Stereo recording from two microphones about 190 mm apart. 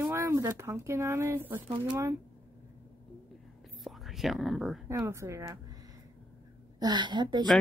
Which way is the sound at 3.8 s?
Centre (ahead or behind).